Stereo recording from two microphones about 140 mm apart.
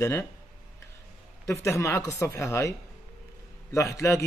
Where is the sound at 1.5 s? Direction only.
20° left (ahead or behind).